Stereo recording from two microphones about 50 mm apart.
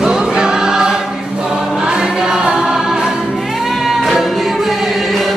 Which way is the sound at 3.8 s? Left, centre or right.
Centre.